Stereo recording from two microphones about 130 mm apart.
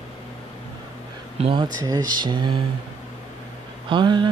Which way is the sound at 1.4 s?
45° right (ahead or behind).